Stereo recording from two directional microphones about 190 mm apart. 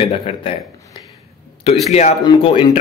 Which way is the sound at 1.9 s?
35° left (ahead or behind).